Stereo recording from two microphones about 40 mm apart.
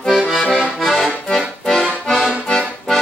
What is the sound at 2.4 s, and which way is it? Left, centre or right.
Accordion, centre.